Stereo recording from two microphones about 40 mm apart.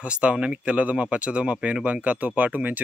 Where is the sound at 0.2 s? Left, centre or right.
Right.